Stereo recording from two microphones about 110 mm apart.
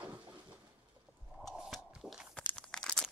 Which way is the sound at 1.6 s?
5° right (ahead or behind).